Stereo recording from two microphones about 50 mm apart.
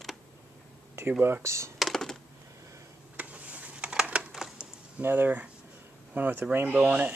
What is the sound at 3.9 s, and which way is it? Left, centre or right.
Computer keyboard, centre.